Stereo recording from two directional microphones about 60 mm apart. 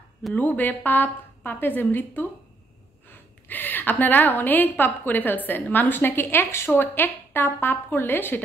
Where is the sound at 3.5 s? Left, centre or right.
Left.